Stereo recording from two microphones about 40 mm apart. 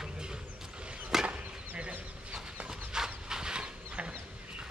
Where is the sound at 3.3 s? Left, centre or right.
Centre.